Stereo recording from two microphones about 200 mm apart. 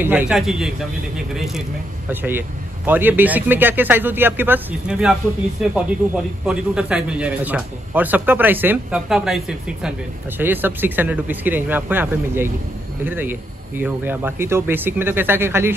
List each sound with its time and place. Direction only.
0.0 s speech: 10° right (ahead or behind)